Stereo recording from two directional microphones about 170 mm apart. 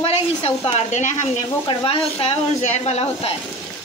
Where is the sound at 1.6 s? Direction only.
30° left (ahead or behind).